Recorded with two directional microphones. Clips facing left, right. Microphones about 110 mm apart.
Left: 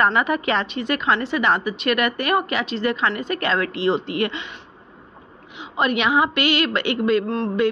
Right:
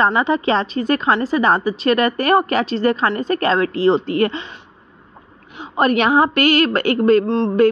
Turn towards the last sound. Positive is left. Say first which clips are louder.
# right 6 dB
turn(degrees=-25)  # may be behind; listen again after turning